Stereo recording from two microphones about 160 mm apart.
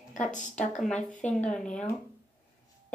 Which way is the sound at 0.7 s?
5° left (ahead or behind).